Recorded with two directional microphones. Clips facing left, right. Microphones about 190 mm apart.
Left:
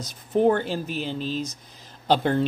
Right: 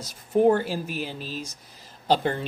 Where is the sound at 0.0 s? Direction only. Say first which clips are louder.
Right 1 dB; 10° right (ahead or behind).